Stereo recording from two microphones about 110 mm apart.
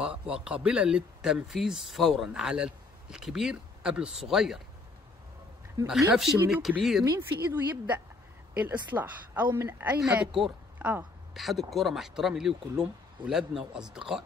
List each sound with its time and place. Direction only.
0.0 s speech: 10° right (ahead or behind)
5.9 s speech: 5° right (ahead or behind)
7.1 s a woman's voice: 20° right (ahead or behind)